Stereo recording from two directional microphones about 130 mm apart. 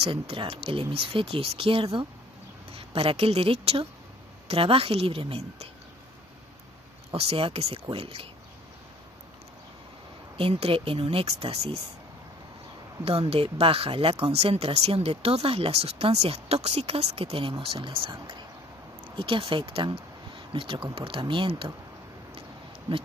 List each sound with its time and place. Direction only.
0.0 s a woman's voice: 45° right (ahead or behind)
7.1 s speech: 45° right (ahead or behind)
10.3 s speech: 50° right (ahead or behind)
13.3 s speech: 45° right (ahead or behind)